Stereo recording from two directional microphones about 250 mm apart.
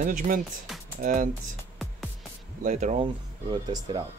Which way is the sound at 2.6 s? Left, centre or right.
Right.